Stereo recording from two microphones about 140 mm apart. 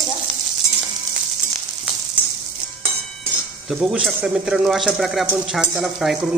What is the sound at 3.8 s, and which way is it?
Speech, 5° right (ahead or behind).